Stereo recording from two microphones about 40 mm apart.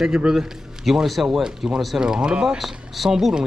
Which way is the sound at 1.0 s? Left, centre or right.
Centre.